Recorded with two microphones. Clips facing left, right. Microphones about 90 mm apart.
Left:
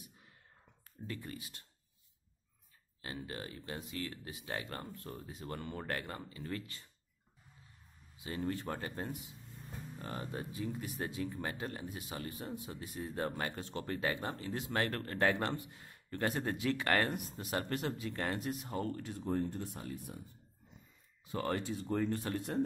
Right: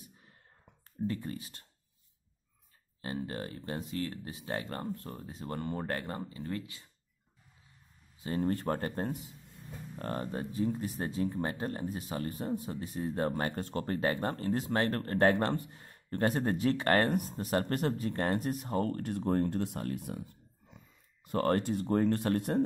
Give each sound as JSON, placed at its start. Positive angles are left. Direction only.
{"t": 1.0, "sound": "speech", "side_deg": -30}
{"t": 3.0, "sound": "speech", "side_deg": -35}
{"t": 8.2, "sound": "speech", "side_deg": -40}